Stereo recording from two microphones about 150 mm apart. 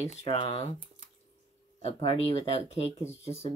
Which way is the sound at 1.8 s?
40° left (ahead or behind).